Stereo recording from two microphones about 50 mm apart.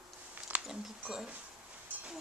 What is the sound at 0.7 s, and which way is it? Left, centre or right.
Speech, centre.